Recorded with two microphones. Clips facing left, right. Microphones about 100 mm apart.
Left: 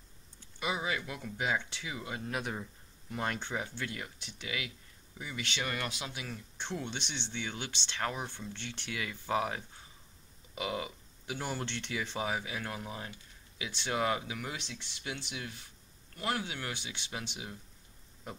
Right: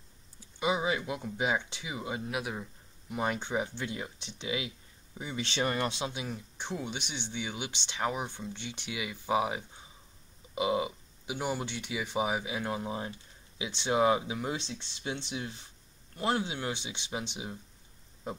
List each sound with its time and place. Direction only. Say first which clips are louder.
0.6 s speech: right 5 dB; 25° right (ahead or behind)
2.2 s speech: right 1 dB; 5° right (ahead or behind); by 18.4 s 25° right (ahead or behind)